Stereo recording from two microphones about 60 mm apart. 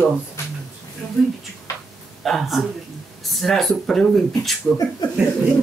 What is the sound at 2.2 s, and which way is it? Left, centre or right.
Speech, centre.